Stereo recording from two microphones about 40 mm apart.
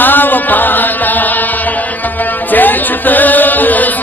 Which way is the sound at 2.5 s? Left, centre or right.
Left.